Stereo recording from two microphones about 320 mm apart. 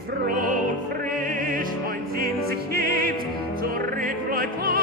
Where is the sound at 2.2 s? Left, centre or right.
Right.